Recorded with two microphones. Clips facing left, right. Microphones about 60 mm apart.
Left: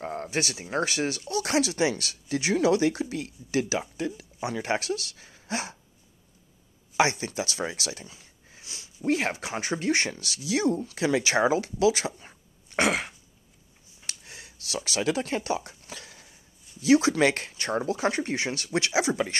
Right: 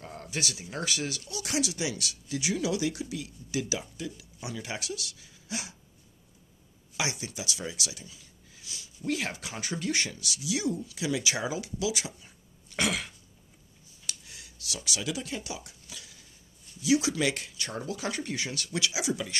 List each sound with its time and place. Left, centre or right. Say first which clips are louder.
0.0 s speech: left 6 dB; left
7.0 s speech: left 9 dB; left
12.6 s throat clearing: left 5 dB; left
14.0 s a sound: left 2 dB; left
14.8 s speech: left 7 dB; left